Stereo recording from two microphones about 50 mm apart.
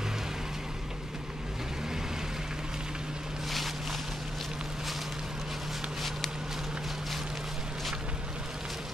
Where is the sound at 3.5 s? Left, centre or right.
Centre.